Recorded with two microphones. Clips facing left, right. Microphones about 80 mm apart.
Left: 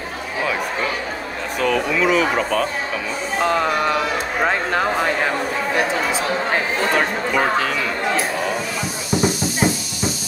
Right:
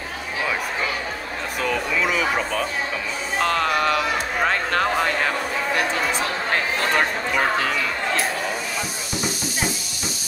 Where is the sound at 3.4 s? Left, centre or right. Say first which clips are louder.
Left 2 dB; centre.